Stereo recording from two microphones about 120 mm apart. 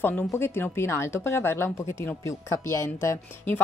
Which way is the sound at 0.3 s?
20° left (ahead or behind).